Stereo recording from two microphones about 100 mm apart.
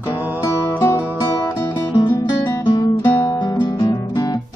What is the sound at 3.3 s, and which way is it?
Guitar, 50° left (ahead or behind).